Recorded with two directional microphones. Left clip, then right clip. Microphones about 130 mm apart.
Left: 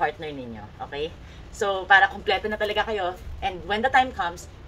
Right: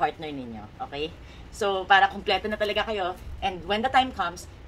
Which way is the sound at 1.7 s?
20° right (ahead or behind).